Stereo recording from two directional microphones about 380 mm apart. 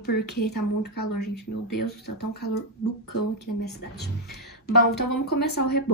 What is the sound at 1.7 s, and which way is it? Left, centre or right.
Speech, left.